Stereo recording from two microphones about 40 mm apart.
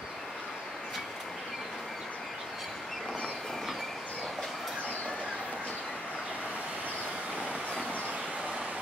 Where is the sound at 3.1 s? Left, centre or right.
Left.